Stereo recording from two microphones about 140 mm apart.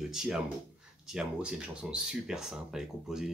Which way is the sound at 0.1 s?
5° right (ahead or behind).